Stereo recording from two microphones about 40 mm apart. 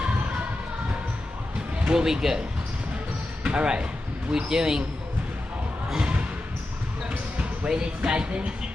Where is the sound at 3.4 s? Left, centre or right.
Right.